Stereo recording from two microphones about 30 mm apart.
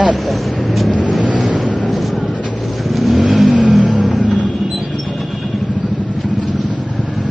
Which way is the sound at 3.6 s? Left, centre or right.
Right.